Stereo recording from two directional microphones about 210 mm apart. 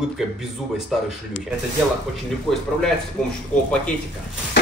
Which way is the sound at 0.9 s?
Centre (ahead or behind).